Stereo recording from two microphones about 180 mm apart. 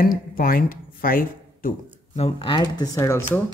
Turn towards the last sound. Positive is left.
turn(degrees=15)  # may be behind; listen again after turning